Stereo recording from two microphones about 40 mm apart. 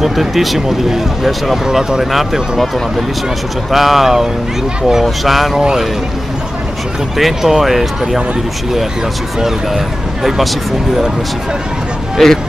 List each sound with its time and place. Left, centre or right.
0.0 s speech: centre
3.7 s speech: centre
5.6 s speech: centre
7.2 s speech: centre
10.2 s speech: centre
12.2 s speech: centre